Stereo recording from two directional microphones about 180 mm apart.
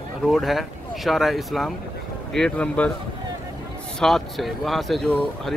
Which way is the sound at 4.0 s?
Centre (ahead or behind).